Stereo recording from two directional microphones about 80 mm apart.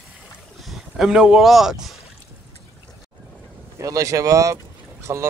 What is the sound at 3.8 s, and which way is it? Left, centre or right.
Speech, right.